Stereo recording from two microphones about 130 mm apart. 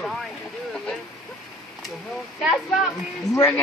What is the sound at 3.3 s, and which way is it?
Speech, 25° left (ahead or behind).